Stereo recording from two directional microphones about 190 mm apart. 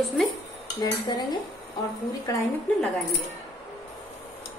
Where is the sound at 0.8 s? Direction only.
20° left (ahead or behind).